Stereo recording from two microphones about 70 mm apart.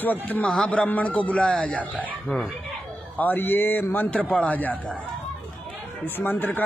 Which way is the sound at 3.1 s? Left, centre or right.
Left.